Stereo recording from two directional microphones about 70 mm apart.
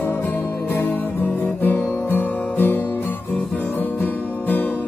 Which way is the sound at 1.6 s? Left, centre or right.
Left.